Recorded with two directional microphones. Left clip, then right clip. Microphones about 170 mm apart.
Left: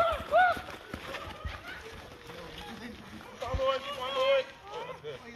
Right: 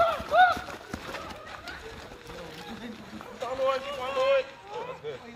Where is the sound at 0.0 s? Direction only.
60° right (ahead or behind).